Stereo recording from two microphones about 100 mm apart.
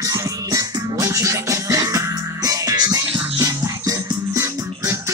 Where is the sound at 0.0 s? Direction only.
35° right (ahead or behind).